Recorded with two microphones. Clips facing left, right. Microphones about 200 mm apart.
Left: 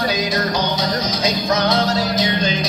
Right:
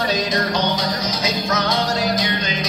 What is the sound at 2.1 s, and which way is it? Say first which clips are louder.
Music: left 3 dB; 30° left (ahead or behind).